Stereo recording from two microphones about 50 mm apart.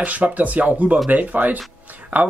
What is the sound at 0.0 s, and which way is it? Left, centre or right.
Speech, right.